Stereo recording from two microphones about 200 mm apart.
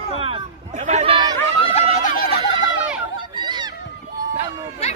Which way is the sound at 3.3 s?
20° right (ahead or behind).